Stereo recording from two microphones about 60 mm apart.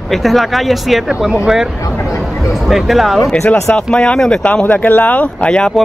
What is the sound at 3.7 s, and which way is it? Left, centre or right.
Speech, centre.